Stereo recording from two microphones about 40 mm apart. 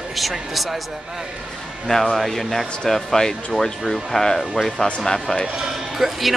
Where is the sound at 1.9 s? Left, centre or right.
Centre.